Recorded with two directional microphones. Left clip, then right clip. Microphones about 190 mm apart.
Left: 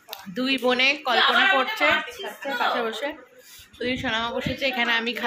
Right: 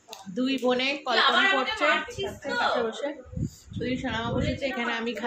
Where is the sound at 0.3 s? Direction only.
10° left (ahead or behind).